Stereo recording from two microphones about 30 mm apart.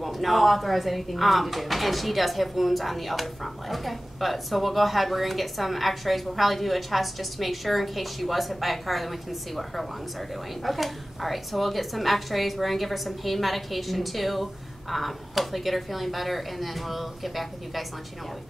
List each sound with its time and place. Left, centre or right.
0.0 s a woman's voice: centre